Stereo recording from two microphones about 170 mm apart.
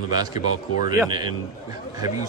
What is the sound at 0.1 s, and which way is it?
Speech, 25° right (ahead or behind).